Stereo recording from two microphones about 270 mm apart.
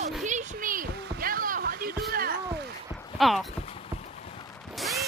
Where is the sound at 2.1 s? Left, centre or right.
Right.